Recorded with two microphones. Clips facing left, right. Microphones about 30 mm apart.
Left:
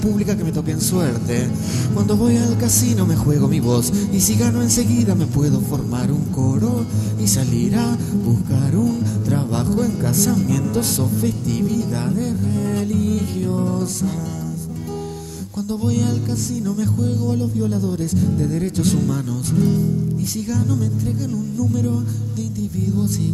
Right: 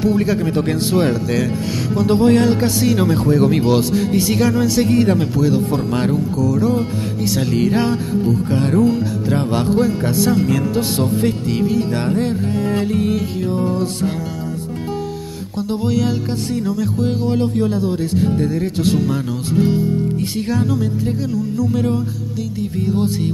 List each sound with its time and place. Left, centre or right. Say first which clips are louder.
0.0 s speech: right 3 dB; right
4.9 s music: right 4 dB; right
16.6 s music: right 2 dB; right
18.5 s speech: right 2 dB; right
21.5 s music: right 3 dB; right